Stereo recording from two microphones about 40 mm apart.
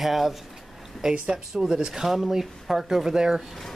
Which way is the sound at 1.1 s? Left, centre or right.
Right.